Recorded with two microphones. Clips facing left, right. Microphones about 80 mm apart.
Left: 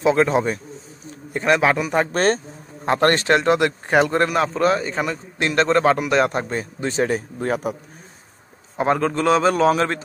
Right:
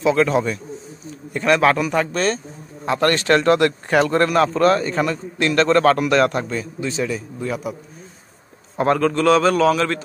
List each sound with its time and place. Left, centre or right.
0.0 s a man's voice: left
1.6 s speech: centre
2.1 s speech: left
3.3 s speech: centre; by 7.7 s left
8.7 s speech: centre